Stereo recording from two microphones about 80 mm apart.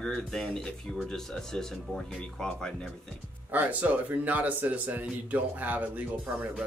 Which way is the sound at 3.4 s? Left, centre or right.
Centre.